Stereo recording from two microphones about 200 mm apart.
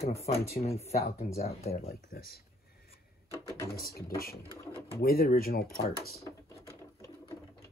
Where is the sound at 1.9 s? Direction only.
50° left (ahead or behind).